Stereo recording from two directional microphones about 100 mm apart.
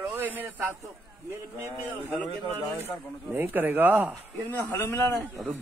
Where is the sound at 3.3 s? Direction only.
20° right (ahead or behind).